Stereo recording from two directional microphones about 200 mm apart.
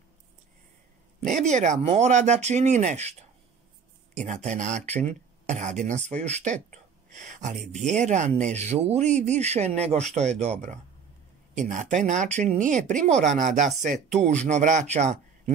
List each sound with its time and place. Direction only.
1.5 s speech: 35° right (ahead or behind)